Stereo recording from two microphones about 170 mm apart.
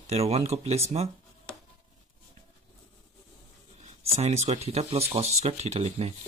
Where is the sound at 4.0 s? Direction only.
35° right (ahead or behind).